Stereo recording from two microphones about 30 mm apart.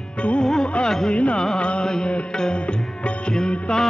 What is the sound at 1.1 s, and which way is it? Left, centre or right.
Music, left.